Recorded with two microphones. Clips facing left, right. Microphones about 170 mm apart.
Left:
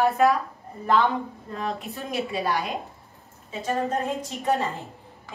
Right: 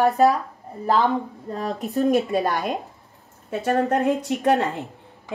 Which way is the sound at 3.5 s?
65° right (ahead or behind).